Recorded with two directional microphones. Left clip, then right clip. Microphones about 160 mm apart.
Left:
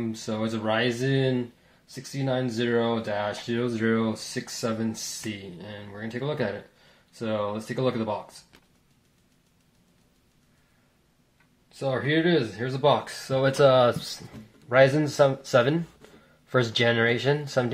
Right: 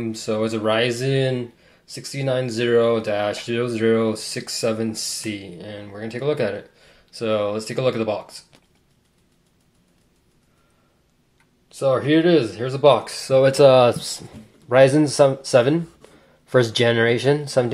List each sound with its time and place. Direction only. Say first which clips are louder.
0.1 s speech: right 8 dB; 25° right (ahead or behind)
11.8 s speech: right 7 dB; 20° right (ahead or behind)